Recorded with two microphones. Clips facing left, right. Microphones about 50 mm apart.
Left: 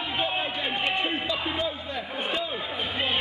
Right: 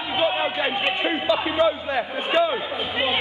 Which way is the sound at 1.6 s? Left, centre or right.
Right.